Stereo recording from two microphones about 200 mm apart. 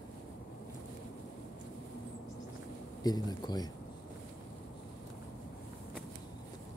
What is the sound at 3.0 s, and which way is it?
Speech, 20° left (ahead or behind).